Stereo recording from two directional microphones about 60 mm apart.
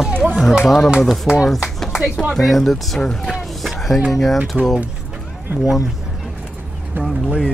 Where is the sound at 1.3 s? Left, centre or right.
Centre.